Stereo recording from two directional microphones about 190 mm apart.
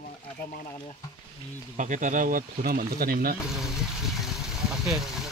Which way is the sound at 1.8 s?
40° right (ahead or behind).